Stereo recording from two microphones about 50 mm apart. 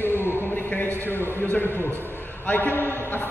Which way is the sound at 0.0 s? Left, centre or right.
Left.